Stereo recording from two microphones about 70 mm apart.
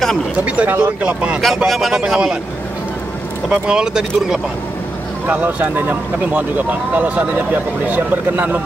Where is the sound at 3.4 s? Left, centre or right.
Centre.